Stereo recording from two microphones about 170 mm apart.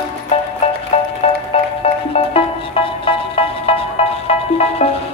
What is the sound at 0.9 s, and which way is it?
Music, 40° left (ahead or behind).